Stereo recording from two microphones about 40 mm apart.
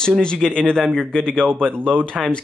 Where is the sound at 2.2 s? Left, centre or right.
Centre.